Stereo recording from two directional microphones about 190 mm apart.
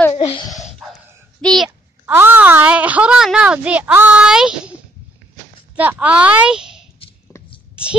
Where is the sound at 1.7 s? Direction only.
10° right (ahead or behind).